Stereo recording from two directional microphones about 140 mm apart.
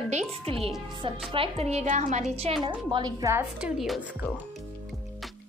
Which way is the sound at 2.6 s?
30° right (ahead or behind).